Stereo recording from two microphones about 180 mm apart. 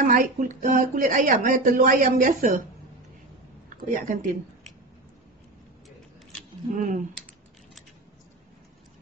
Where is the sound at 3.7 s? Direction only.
45° right (ahead or behind).